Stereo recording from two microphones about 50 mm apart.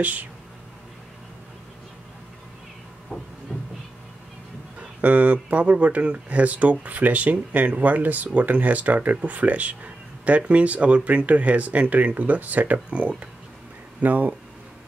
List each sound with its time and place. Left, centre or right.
0.0 s speech: right
3.5 s a sound: centre
4.7 s speech: right